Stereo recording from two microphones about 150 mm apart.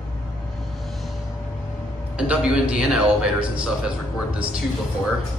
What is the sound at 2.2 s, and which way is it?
A man's voice, 5° right (ahead or behind).